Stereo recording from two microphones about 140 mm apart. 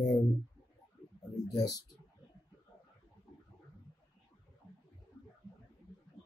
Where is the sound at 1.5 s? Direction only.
25° left (ahead or behind).